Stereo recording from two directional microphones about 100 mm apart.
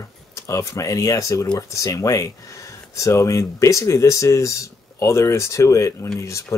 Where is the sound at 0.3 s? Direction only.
30° left (ahead or behind).